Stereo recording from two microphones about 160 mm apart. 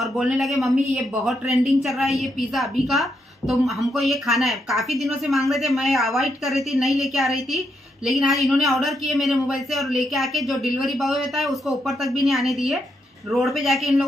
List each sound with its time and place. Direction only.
0.0 s speech: centre (ahead or behind)